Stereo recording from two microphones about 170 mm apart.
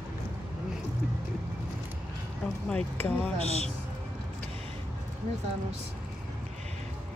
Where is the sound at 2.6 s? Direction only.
10° left (ahead or behind).